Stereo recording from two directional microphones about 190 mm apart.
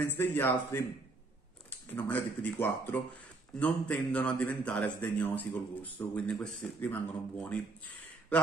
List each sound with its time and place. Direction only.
0.0 s a man's voice: 10° left (ahead or behind)